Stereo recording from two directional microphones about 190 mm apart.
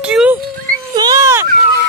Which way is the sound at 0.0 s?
5° right (ahead or behind).